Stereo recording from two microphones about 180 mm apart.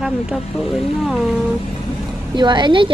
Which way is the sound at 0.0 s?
5° right (ahead or behind).